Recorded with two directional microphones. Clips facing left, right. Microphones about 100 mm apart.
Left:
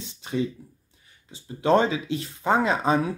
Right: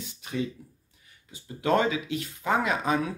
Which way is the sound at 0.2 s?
25° left (ahead or behind).